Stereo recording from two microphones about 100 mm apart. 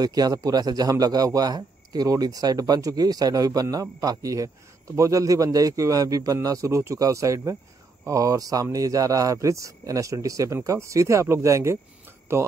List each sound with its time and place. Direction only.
0.0 s a man's voice: 40° right (ahead or behind); by 12.4 s 25° right (ahead or behind)